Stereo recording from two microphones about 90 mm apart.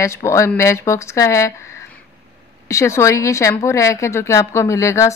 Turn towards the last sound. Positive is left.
turn(degrees=35)  # may be behind; listen again after turning